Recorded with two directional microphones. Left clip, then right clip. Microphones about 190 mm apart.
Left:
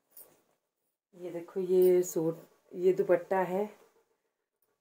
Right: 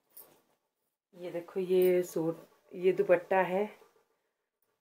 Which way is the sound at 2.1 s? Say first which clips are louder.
Left 1 dB; 20° left (ahead or behind).